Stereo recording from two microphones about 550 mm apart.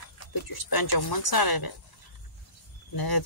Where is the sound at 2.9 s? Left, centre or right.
Left.